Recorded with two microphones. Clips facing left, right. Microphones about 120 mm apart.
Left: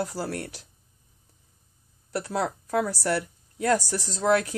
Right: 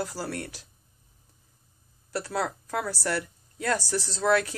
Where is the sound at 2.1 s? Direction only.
20° left (ahead or behind).